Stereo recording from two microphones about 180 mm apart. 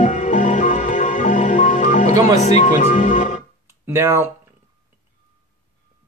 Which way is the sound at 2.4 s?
40° left (ahead or behind).